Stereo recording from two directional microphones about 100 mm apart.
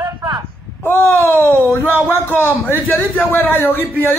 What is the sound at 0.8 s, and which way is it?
Speech, 20° left (ahead or behind).